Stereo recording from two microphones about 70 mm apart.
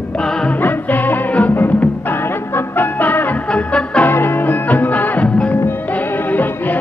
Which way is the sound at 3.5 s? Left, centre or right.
Centre.